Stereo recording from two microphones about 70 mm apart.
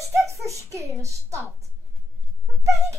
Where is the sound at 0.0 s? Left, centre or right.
Right.